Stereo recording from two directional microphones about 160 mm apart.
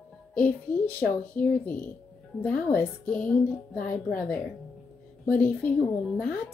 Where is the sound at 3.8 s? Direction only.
60° left (ahead or behind).